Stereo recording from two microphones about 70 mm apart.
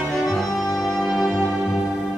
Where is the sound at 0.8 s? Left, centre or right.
Centre.